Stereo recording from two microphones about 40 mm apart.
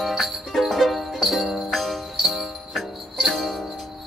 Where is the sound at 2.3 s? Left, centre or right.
Centre.